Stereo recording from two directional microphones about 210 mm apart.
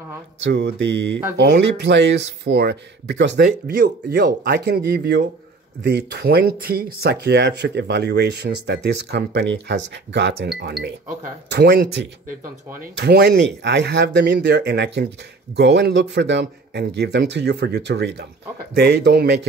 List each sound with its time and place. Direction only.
0.4 s music: 55° right (ahead or behind)
1.3 s speech: 55° right (ahead or behind)